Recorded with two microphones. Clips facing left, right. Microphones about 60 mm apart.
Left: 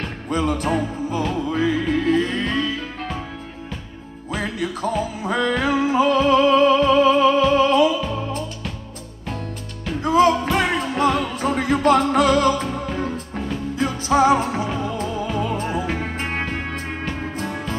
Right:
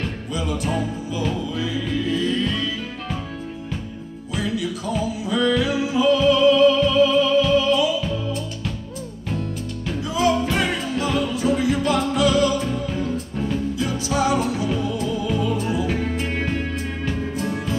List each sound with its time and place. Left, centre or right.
0.3 s music: left
4.3 s music: left
10.0 s music: left